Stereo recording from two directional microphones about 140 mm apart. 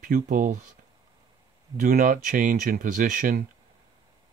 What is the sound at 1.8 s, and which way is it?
Speech, 90° right.